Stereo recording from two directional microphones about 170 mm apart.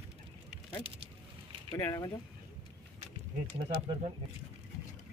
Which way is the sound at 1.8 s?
15° left (ahead or behind).